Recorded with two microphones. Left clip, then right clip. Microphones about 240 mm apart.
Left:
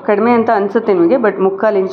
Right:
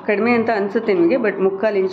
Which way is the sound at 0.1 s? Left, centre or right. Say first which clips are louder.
Left 6 dB; centre.